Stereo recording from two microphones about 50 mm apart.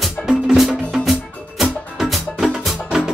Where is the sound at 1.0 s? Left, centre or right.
Centre.